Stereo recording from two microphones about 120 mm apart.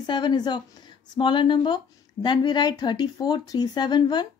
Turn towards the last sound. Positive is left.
turn(degrees=40)  # may be behind; listen again after turning